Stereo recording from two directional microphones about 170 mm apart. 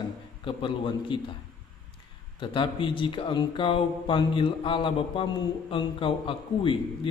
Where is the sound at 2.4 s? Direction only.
30° left (ahead or behind).